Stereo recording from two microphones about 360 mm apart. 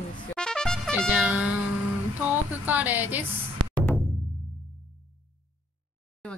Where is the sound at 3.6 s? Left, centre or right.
Right.